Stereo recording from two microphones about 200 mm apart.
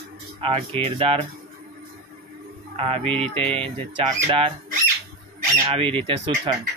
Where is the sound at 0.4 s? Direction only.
30° right (ahead or behind).